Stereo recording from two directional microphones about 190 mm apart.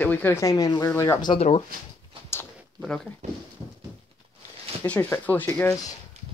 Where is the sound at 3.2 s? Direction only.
35° right (ahead or behind).